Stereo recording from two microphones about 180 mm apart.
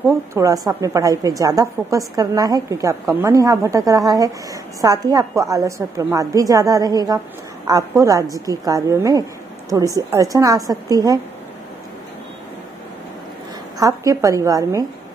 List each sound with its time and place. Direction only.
0.3 s a woman's voice: 20° right (ahead or behind)
13.7 s a woman's voice: 20° right (ahead or behind)